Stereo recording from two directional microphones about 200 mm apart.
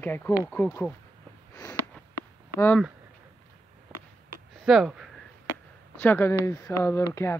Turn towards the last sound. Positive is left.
turn(degrees=15)  # may be behind; listen again after turning